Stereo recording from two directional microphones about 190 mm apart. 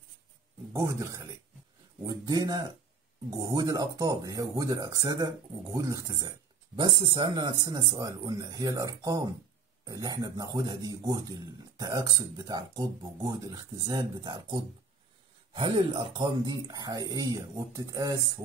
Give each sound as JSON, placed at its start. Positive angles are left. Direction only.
{"t": 0.7, "sound": "speech", "side_deg": -15}